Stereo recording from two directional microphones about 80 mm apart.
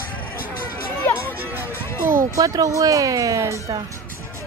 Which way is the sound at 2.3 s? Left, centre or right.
Right.